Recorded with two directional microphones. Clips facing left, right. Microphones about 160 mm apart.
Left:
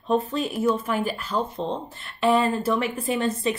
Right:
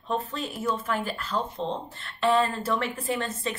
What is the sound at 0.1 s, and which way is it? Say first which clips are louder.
A woman's voice: left 7 dB; 15° left (ahead or behind).